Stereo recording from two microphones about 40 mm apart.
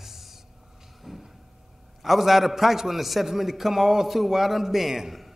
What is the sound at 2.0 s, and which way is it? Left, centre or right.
A man's voice, centre.